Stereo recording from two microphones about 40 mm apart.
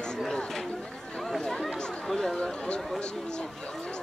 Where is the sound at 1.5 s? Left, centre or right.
Centre.